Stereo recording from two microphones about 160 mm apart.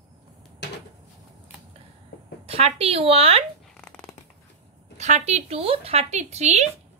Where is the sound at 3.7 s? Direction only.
5° left (ahead or behind).